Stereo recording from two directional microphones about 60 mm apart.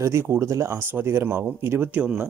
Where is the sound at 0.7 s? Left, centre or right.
Right.